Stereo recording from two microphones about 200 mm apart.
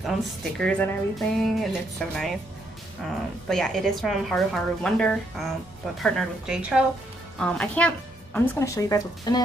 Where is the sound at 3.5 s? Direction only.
Centre (ahead or behind); by 9.4 s 20° left (ahead or behind).